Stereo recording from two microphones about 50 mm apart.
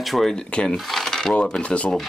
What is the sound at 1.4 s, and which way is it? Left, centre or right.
Speech, left.